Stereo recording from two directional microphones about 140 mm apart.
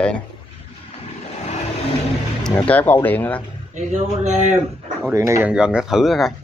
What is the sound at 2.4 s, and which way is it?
Speech, 10° left (ahead or behind).